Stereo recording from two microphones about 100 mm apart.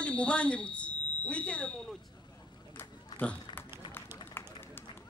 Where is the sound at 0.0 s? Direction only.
10° left (ahead or behind).